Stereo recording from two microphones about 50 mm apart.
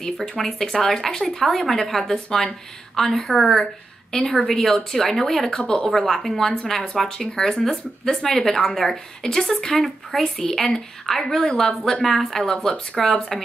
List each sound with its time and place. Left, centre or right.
0.0 s a woman's voice: centre
5.5 s speech: centre
5.9 s a woman's voice: centre